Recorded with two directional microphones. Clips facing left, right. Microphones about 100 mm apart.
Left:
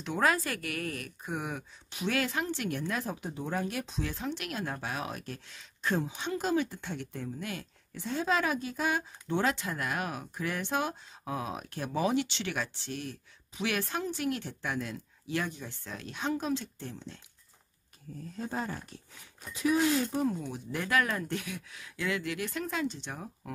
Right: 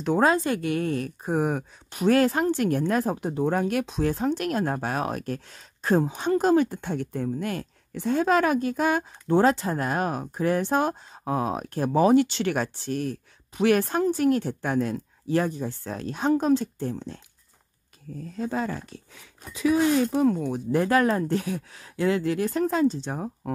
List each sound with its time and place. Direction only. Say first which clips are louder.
0.2 s speech: right 4 dB; 25° right (ahead or behind); by 4.0 s 60° right (ahead or behind)
4.0 s speech: right 11 dB; 45° right (ahead or behind)
20.2 s speech: right 9 dB; 75° right (ahead or behind)
20.5 s speech: right 8 dB; 40° right (ahead or behind)